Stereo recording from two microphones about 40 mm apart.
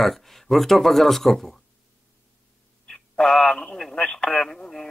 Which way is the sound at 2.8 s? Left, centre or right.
Centre.